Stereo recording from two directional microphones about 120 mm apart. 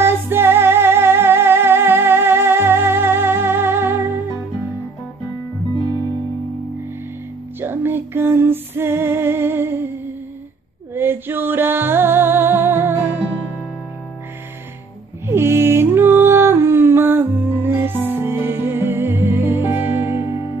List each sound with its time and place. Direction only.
0.0 s music: 20° right (ahead or behind)
7.6 s music: 20° right (ahead or behind)
11.0 s music: 20° right (ahead or behind)
15.2 s music: 20° right (ahead or behind)